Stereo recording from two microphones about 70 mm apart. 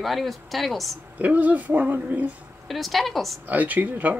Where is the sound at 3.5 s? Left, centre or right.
Right.